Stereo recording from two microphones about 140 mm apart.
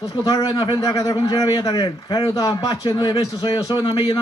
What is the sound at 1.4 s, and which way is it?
Speech, 40° left (ahead or behind).